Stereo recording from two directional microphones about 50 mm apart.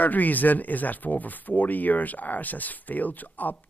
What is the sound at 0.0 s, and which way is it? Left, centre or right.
Speech, left.